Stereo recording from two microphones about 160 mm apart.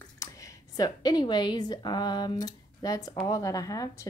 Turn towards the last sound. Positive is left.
turn(degrees=20)  # may be behind; listen again after turning